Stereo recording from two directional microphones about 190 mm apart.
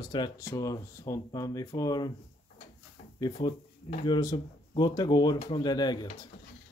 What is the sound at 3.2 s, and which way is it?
Speech, 20° left (ahead or behind).